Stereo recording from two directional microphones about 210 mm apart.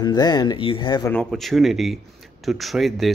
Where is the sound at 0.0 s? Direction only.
20° left (ahead or behind).